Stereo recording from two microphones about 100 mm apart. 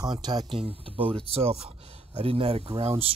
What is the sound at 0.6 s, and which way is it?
Speech, 65° right (ahead or behind).